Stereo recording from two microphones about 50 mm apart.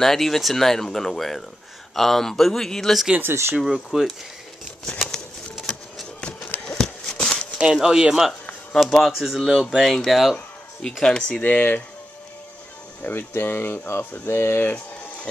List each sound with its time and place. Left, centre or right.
0.0 s speech: centre
3.2 s speech: right
3.6 s speech: centre
5.6 s a sound: centre
6.8 s a sound: centre
7.5 s speech: centre
10.8 s speech: centre
11.4 s speech: left
13.0 s speech: left